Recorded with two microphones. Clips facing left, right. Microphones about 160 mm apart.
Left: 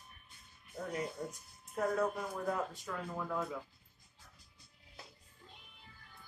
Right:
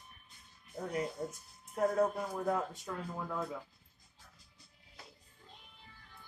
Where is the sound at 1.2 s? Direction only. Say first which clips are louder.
Right 2 dB; 25° right (ahead or behind).